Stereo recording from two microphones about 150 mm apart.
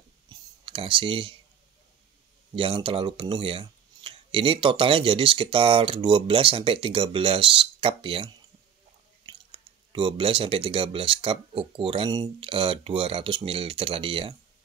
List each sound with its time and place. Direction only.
0.3 s clicking: 35° right (ahead or behind)
2.5 s speech: 35° right (ahead or behind)